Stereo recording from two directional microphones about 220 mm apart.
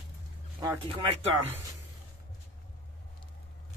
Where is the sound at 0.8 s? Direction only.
25° right (ahead or behind).